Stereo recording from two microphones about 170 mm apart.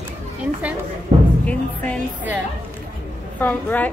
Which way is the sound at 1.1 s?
45° right (ahead or behind).